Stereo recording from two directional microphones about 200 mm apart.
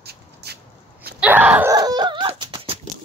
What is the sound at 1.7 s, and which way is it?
Dog, 20° right (ahead or behind).